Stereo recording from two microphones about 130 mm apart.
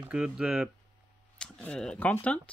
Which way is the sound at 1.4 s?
5° left (ahead or behind).